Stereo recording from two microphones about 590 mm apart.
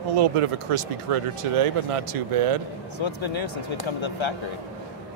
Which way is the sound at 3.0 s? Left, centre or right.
Left.